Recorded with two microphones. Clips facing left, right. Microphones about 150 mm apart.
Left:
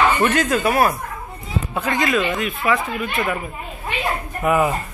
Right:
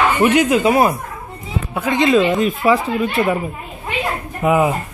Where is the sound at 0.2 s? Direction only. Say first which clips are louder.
Right 5 dB; 15° right (ahead or behind).